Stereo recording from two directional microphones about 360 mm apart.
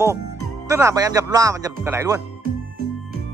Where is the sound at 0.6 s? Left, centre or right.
Centre.